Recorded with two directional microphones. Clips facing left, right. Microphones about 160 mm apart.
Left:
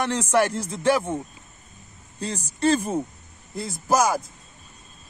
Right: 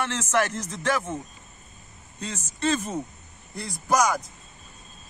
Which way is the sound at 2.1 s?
35° left (ahead or behind).